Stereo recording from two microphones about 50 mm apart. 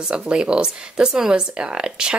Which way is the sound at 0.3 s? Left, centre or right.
Centre.